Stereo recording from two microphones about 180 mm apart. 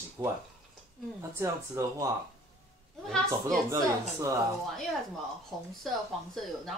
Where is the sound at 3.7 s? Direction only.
15° right (ahead or behind).